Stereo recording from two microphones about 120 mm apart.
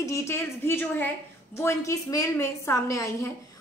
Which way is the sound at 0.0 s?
25° left (ahead or behind).